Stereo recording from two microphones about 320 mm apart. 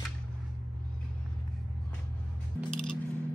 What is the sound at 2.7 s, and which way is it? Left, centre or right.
Music, centre.